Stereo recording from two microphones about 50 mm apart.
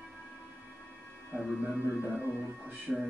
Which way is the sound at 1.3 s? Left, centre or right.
Right.